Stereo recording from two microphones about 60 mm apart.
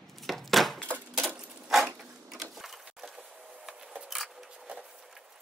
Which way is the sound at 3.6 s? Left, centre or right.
Centre.